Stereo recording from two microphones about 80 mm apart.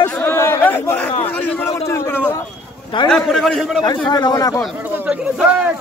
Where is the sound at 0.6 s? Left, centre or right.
Left.